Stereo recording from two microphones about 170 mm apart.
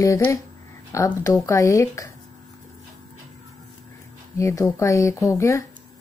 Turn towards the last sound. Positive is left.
turn(degrees=20)  # may be behind; listen again after turning